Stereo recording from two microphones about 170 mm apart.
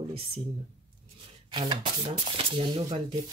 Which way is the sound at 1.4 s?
25° right (ahead or behind).